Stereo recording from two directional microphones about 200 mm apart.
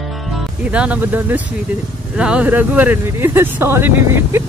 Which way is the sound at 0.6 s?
5° right (ahead or behind).